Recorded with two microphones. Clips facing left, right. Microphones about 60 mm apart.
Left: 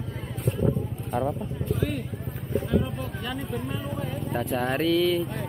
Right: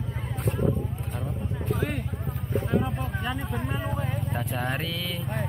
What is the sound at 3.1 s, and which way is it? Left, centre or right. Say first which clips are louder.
Speech: right 1 dB; centre.